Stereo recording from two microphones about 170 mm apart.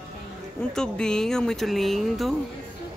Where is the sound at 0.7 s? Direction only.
5° left (ahead or behind).